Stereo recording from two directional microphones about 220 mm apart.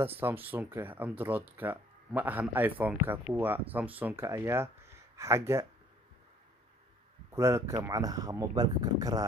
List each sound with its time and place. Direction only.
0.2 s speech: 10° right (ahead or behind)
7.3 s speech: 15° right (ahead or behind)